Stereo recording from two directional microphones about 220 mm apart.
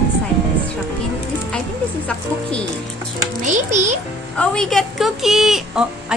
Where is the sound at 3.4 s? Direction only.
35° right (ahead or behind).